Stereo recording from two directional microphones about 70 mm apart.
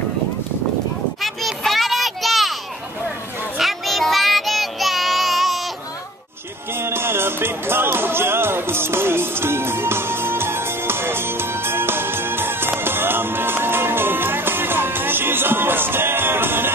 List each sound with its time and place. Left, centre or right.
1.2 s a sound: centre
3.5 s child singing: centre
6.7 s music: right